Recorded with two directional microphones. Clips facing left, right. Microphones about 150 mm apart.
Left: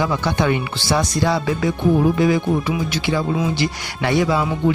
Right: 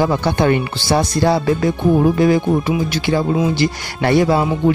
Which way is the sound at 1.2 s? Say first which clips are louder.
Right 4 dB; 40° right (ahead or behind).